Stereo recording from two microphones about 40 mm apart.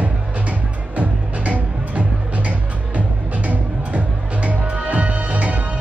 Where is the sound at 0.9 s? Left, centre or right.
Right.